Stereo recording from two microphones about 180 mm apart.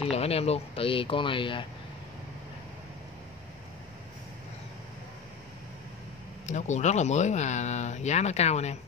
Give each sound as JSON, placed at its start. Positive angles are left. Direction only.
{"t": 0.0, "sound": "speech", "side_deg": 35}
{"t": 6.4, "sound": "speech", "side_deg": 40}